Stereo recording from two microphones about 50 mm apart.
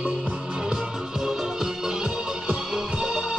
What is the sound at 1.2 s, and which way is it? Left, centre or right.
Music, centre.